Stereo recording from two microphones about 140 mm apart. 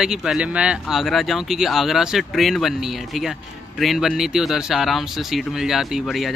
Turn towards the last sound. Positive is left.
turn(degrees=0)  # may be behind; listen again after turning